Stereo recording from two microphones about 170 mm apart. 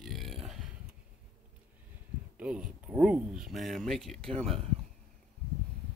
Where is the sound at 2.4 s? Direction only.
5° right (ahead or behind).